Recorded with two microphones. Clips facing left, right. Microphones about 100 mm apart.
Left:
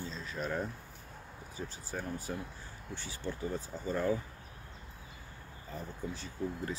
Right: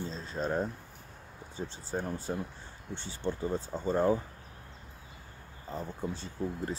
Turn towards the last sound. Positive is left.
turn(degrees=-30)  # may be behind; listen again after turning